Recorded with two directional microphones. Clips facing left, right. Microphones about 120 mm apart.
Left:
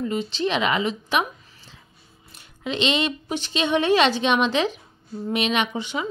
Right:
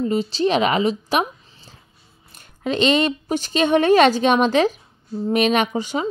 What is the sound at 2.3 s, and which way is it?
Speech, 45° right (ahead or behind).